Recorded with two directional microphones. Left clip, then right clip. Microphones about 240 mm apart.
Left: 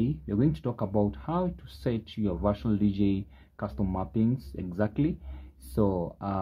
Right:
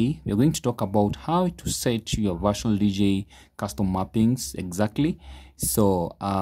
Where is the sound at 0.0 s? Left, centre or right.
Right.